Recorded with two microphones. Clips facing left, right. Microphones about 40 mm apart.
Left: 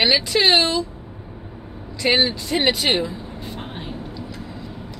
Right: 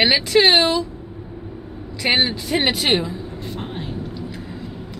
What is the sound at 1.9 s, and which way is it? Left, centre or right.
Speech, centre.